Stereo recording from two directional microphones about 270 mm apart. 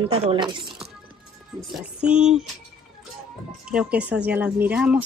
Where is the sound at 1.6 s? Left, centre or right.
Centre.